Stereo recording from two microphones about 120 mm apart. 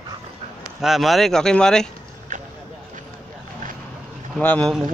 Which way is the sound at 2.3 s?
90° right.